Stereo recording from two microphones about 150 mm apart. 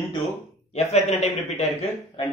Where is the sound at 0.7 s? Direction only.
45° left (ahead or behind).